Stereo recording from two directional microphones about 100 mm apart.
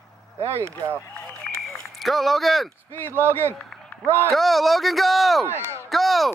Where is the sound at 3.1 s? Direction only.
20° right (ahead or behind).